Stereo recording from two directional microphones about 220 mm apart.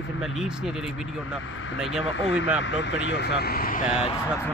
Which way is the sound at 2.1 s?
55° left (ahead or behind).